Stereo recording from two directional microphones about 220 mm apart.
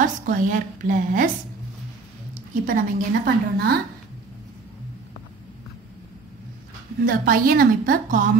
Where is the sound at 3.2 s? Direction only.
45° right (ahead or behind).